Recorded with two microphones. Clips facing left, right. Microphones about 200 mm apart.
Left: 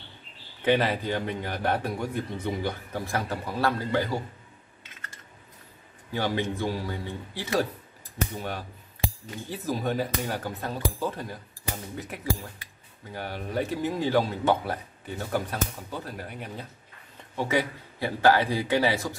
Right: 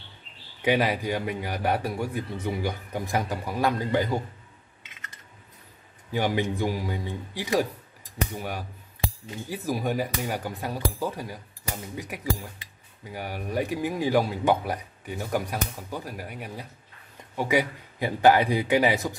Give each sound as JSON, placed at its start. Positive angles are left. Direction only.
{"t": 0.6, "sound": "a man's voice", "side_deg": -10}
{"t": 6.1, "sound": "a man's voice", "side_deg": -15}